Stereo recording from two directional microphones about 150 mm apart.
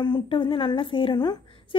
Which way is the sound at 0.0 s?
30° left (ahead or behind).